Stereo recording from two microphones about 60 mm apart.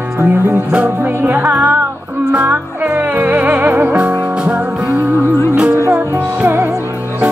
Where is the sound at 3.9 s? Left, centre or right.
Right.